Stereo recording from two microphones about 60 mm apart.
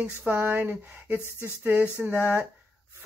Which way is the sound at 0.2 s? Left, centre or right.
Right.